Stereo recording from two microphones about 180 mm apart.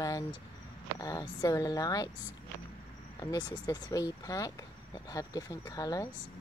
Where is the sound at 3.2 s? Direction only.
25° left (ahead or behind).